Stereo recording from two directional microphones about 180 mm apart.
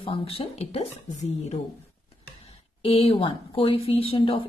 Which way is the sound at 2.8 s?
30° left (ahead or behind).